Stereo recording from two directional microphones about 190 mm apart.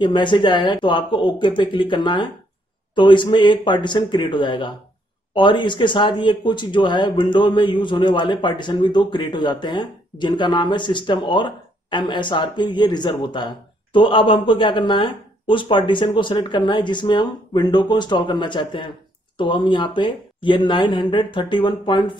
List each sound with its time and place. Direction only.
0.0 s speech: 25° left (ahead or behind)